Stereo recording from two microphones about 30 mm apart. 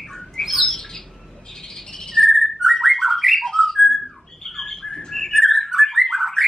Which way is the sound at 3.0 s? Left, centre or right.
Centre.